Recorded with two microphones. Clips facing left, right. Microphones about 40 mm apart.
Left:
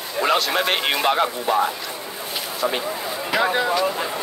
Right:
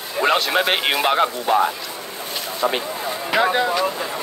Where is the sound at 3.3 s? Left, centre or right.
Right.